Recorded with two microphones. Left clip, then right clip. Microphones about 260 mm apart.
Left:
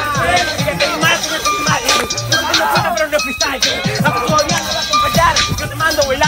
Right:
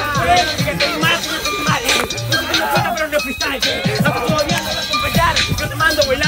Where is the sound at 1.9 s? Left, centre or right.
Centre.